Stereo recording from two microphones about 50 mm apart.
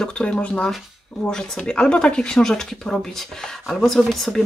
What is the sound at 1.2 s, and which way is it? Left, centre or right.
Speech, centre.